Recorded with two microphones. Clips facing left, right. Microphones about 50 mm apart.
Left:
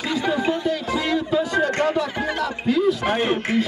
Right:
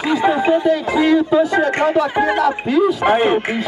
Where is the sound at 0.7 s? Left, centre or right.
Centre.